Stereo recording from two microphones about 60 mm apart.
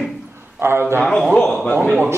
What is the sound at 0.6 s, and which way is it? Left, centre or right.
Speech, right.